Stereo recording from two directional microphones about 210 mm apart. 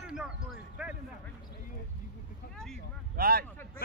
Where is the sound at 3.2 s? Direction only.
45° right (ahead or behind).